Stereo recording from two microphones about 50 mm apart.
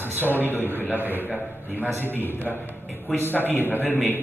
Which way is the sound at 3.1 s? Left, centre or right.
Left.